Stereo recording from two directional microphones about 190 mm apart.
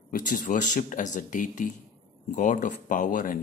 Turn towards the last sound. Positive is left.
turn(degrees=45)  # may be behind; listen again after turning